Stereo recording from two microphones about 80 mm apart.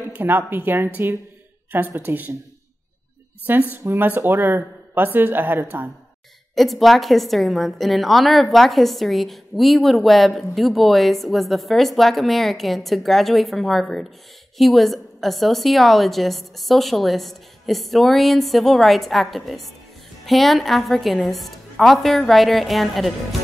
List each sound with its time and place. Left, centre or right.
0.2 s speech: right
3.7 s speech: right
6.5 s a woman's voice: centre